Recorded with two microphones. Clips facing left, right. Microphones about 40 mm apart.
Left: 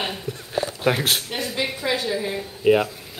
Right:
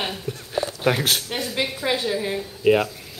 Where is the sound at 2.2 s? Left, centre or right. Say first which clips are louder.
Left 1 dB; centre.